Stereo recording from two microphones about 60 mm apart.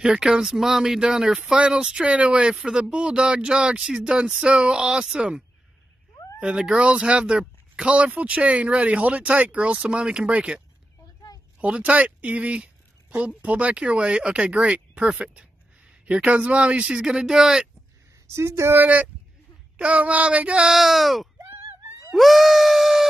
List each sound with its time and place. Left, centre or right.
0.0 s speech: centre
6.4 s speech: centre
11.6 s a woman's voice: centre
18.2 s a woman's voice: right
18.8 s speech: right
20.6 s speech: centre
22.1 s screaming: centre